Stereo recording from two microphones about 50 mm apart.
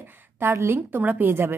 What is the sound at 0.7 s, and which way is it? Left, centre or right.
Speech, right.